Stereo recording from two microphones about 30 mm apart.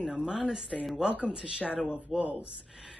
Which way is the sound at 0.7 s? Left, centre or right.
Centre.